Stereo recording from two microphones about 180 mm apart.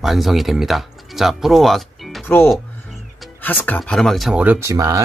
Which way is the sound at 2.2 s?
10° left (ahead or behind).